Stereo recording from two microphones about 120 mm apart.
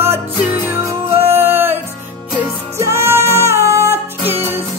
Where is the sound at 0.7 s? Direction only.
20° right (ahead or behind).